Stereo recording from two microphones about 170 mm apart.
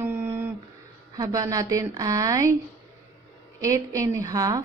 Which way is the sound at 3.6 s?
20° right (ahead or behind).